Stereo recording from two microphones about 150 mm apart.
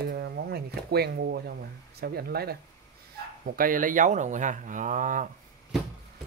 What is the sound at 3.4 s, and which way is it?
Speech, 65° right (ahead or behind).